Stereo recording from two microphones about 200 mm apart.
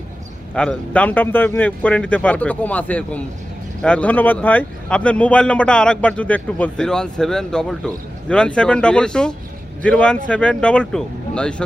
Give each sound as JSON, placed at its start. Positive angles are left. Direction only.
{"t": 0.6, "sound": "a man's voice", "side_deg": 5}